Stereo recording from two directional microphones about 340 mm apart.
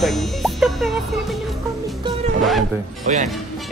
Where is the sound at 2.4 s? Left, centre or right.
Centre.